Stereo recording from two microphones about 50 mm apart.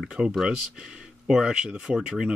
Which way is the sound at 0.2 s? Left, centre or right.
Centre.